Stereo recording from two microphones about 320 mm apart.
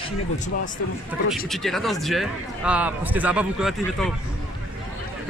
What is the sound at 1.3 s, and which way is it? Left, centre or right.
Speech, centre.